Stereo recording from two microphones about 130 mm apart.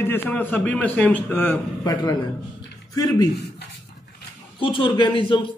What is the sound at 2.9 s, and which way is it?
Speech, 30° left (ahead or behind).